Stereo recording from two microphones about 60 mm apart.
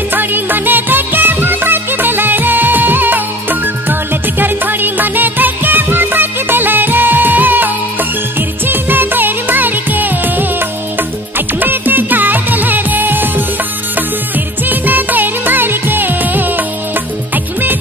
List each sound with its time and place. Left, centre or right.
0.1 s music: right